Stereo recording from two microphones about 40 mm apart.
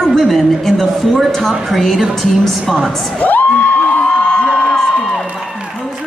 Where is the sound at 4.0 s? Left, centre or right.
Centre.